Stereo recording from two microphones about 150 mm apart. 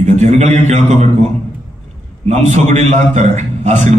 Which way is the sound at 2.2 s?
50° right (ahead or behind).